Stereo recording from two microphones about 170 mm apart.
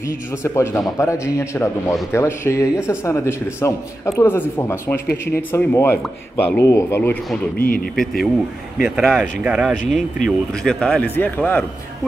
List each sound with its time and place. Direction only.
0.4 s a man's voice: 15° left (ahead or behind)
7.5 s speech: 55° left (ahead or behind)
8.7 s a man's voice: 5° right (ahead or behind)